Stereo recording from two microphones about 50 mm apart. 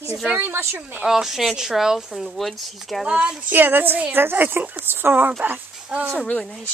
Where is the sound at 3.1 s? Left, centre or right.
Right.